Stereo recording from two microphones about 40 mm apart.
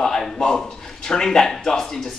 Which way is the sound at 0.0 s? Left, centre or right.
Centre.